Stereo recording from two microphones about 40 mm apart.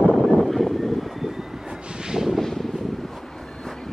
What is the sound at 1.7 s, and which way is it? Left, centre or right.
Vehicle, right.